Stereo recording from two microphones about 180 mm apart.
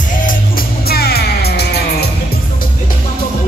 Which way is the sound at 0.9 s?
60° left (ahead or behind).